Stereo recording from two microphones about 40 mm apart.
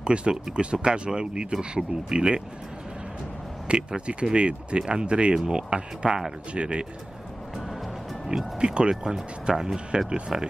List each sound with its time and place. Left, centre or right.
0.0 s speech: right
3.6 s speech: right
8.5 s speech: right
9.8 s speech: right